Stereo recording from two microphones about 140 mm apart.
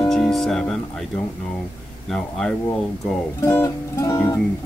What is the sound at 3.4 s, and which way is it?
Music, 20° left (ahead or behind).